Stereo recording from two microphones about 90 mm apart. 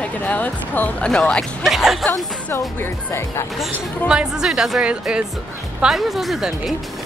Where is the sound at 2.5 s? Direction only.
25° left (ahead or behind).